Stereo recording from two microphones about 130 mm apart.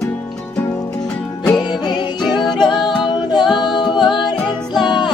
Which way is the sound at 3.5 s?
40° left (ahead or behind).